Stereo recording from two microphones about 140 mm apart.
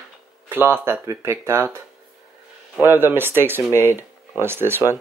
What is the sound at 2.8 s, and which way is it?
Speech, 15° right (ahead or behind).